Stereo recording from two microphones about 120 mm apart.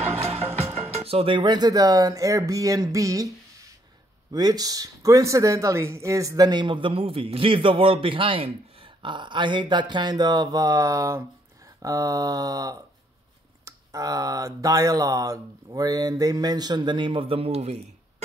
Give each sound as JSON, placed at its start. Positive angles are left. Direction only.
{"t": 0.0, "sound": "speech", "side_deg": -60}
{"t": 4.3, "sound": "speech", "side_deg": -35}